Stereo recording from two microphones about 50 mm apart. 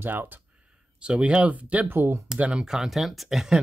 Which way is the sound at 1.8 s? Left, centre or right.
Right.